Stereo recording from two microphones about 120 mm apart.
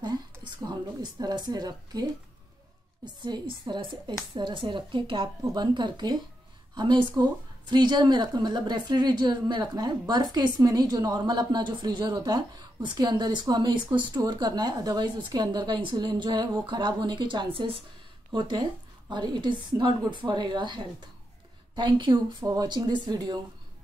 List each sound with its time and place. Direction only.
0.0 s a sound: 35° right (ahead or behind)
3.2 s a woman's voice: 40° right (ahead or behind)
18.3 s a woman's voice: 40° right (ahead or behind)